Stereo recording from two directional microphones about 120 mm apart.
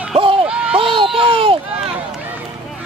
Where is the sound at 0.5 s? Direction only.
10° right (ahead or behind).